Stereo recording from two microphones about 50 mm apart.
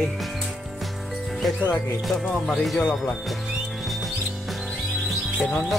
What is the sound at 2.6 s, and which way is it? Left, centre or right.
Speech, centre.